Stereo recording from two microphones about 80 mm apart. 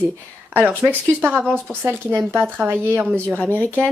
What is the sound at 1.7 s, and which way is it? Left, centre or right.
Speech, centre.